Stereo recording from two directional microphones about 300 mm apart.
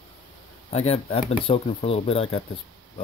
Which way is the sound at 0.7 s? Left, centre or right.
Centre.